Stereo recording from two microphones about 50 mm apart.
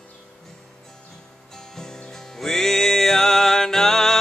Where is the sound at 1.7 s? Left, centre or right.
Centre.